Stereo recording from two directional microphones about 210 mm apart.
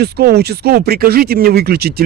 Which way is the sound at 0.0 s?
50° right (ahead or behind).